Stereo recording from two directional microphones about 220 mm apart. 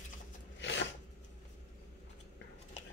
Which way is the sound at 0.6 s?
55° left (ahead or behind).